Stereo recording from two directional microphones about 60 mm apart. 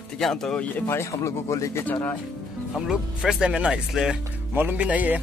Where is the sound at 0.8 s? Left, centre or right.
Left.